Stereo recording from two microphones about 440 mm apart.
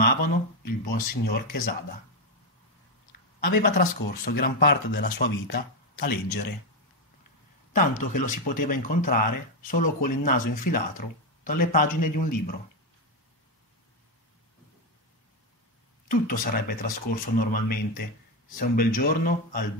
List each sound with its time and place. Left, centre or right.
0.0 s a sound: centre
0.7 s speech: centre
3.1 s speech: left
7.7 s speech: centre
16.1 s speech: centre